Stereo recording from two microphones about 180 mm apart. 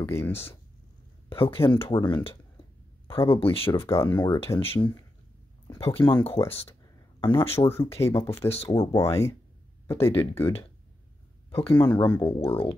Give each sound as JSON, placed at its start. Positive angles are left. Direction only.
{"t": 0.0, "sound": "speech", "side_deg": 15}
{"t": 1.3, "sound": "speech", "side_deg": 30}
{"t": 3.8, "sound": "speech", "side_deg": 15}
{"t": 7.5, "sound": "speech", "side_deg": 15}
{"t": 8.5, "sound": "speech", "side_deg": 35}
{"t": 8.9, "sound": "speech", "side_deg": 15}
{"t": 11.5, "sound": "speech", "side_deg": 10}
{"t": 12.4, "sound": "speech", "side_deg": 30}